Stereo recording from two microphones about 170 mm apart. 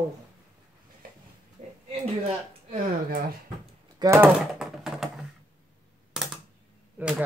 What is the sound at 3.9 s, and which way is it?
Speech, 15° right (ahead or behind).